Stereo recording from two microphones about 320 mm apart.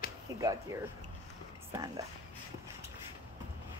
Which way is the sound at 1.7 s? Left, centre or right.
Centre.